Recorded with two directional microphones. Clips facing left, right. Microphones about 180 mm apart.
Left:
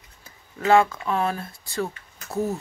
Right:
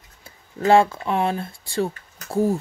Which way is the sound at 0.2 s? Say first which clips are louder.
Right 4 dB; 30° right (ahead or behind).